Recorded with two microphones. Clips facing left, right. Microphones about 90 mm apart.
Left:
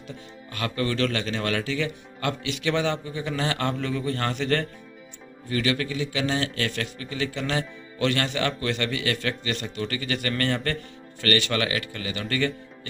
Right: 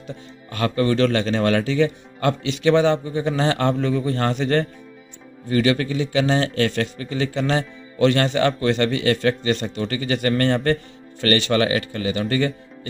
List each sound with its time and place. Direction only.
0.5 s a man's voice: 35° right (ahead or behind)